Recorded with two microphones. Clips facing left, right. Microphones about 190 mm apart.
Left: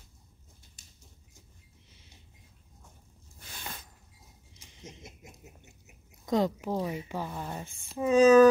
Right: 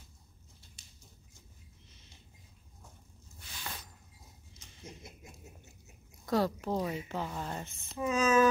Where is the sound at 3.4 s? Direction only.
45° left (ahead or behind).